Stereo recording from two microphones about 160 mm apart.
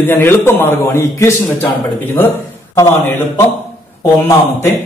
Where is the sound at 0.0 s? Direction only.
15° left (ahead or behind).